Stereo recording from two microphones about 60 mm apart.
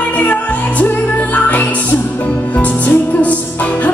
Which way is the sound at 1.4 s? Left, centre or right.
Left.